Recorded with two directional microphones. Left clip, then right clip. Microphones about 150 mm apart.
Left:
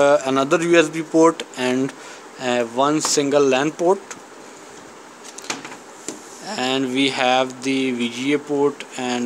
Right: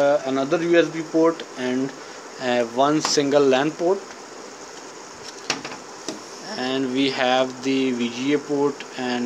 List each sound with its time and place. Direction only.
0.0 s speech: 45° left (ahead or behind)
2.4 s speech: 25° left (ahead or behind)
6.5 s speech: 40° left (ahead or behind)